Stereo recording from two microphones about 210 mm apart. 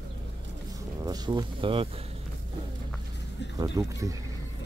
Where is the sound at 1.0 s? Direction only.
20° right (ahead or behind).